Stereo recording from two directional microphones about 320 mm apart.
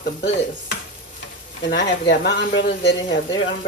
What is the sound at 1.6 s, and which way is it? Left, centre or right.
Speech, left.